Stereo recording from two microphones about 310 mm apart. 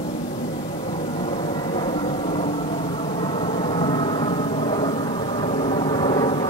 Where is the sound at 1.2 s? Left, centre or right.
Centre.